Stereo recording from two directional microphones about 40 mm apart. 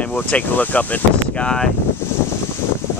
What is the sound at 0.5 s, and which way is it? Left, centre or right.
Speech, left.